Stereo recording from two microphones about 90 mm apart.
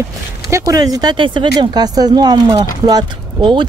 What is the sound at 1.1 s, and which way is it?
Speech, 65° right (ahead or behind).